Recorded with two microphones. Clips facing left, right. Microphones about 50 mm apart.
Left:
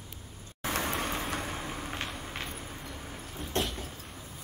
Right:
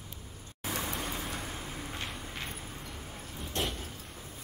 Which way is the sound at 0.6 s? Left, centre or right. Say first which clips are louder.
Left 4 dB; left.